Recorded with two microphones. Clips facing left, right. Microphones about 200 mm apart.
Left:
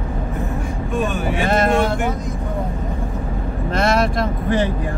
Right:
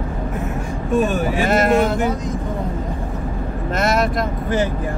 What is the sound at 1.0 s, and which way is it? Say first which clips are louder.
Speech: right 2 dB; 40° right (ahead or behind).